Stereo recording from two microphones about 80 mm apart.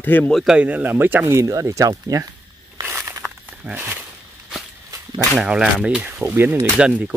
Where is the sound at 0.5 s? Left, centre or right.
Centre.